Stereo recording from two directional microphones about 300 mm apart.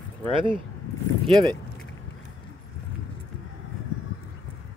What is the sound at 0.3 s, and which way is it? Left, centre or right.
Speech, centre.